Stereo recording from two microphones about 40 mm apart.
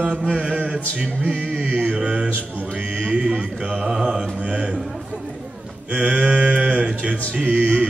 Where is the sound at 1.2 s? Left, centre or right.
Right.